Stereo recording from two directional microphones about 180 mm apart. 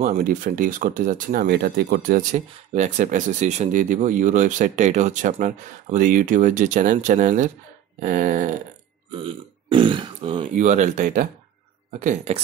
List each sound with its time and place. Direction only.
0.0 s speech: 50° right (ahead or behind)
9.1 s speech: 30° right (ahead or behind)
10.4 s speech: 45° right (ahead or behind)